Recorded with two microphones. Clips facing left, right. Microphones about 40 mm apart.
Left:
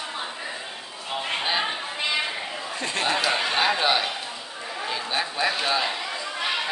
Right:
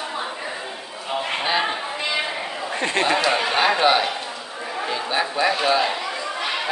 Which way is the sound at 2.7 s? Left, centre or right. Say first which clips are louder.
Right 7 dB; right.